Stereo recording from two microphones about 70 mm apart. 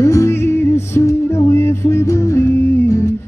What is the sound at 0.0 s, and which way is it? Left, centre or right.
Music, left.